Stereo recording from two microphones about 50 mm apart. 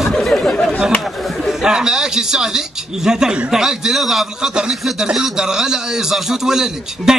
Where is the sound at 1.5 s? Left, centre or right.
Centre.